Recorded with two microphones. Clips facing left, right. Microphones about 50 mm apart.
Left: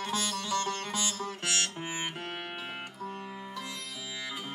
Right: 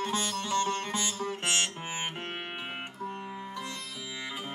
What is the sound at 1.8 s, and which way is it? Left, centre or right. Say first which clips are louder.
Music: even; right.